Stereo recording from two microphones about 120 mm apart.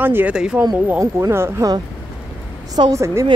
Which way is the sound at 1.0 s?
25° right (ahead or behind).